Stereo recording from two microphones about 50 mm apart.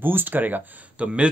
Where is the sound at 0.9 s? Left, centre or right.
Right.